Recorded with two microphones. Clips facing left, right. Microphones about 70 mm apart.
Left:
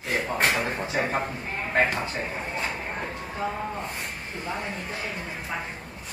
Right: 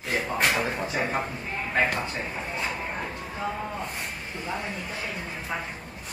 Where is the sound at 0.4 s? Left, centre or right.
Left.